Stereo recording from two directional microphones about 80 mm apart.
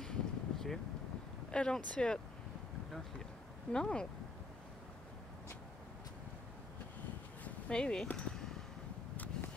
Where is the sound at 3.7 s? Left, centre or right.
Centre.